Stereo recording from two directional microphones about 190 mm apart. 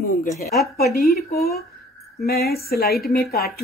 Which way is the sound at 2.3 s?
55° left (ahead or behind).